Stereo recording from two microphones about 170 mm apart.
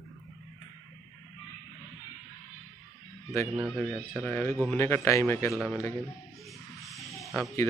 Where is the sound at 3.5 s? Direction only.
Centre (ahead or behind); by 5.5 s 15° left (ahead or behind).